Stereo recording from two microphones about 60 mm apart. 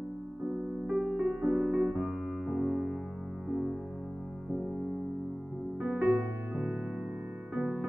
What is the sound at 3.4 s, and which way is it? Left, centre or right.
Music, centre.